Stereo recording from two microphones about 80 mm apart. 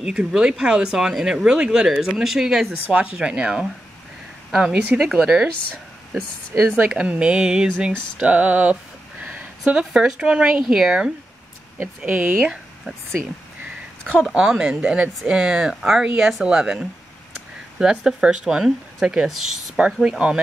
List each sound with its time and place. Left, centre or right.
0.0 s speech: centre
6.8 s speech: centre
12.0 s speech: centre
14.3 s speech: centre